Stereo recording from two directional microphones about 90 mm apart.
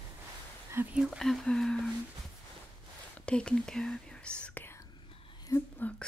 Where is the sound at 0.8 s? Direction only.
25° right (ahead or behind).